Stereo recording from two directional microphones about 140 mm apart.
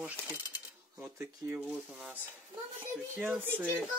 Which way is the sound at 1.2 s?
15° right (ahead or behind).